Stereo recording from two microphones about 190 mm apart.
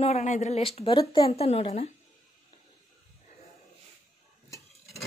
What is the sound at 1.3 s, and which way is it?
Speech, 35° left (ahead or behind).